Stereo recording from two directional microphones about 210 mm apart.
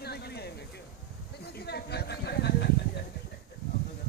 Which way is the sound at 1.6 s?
50° left (ahead or behind).